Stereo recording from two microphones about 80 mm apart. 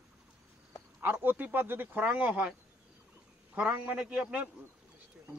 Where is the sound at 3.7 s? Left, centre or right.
Centre.